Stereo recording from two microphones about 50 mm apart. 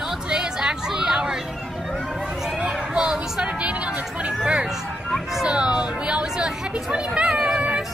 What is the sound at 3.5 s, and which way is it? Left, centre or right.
Music, right.